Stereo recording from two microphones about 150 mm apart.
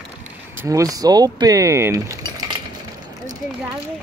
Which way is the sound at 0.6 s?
20° right (ahead or behind).